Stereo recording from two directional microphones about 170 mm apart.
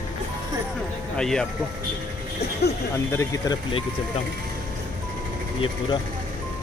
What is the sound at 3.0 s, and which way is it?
Speech, 20° left (ahead or behind).